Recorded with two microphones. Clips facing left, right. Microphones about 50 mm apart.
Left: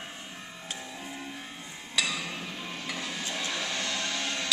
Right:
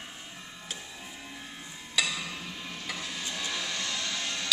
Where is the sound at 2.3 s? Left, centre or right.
Left.